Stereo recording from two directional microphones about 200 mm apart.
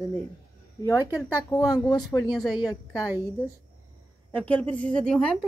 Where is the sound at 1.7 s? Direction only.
20° left (ahead or behind).